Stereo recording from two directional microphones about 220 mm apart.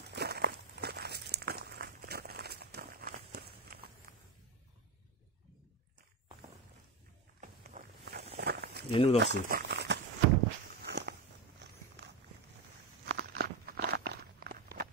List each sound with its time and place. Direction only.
0.0 s walk: 50° right (ahead or behind)
7.3 s walk: 35° right (ahead or behind)
8.0 s a sound: 50° right (ahead or behind)
8.4 s walk: 45° right (ahead or behind)
8.9 s speech: 25° left (ahead or behind)
9.2 s speech: 50° right (ahead or behind)
10.8 s walk: 45° right (ahead or behind)
13.0 s walk: 45° right (ahead or behind)